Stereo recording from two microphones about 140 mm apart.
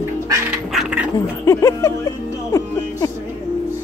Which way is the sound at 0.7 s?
Centre (ahead or behind).